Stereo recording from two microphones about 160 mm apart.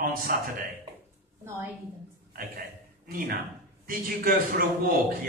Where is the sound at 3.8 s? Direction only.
60° right (ahead or behind).